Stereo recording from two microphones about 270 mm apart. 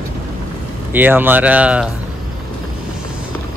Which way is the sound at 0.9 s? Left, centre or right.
Centre.